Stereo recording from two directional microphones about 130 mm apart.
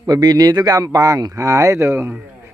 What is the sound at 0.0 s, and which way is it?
Speech, 30° right (ahead or behind).